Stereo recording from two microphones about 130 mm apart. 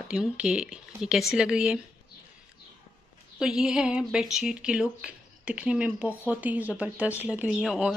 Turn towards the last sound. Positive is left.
turn(degrees=0)  # may be behind; listen again after turning